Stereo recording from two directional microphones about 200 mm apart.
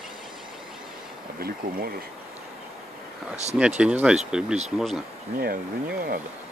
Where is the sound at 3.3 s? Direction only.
35° right (ahead or behind).